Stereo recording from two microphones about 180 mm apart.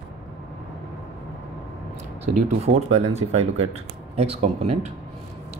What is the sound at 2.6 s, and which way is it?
Speech, 35° right (ahead or behind).